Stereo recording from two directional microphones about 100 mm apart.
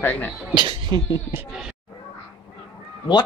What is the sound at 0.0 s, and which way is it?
Speech, 20° left (ahead or behind).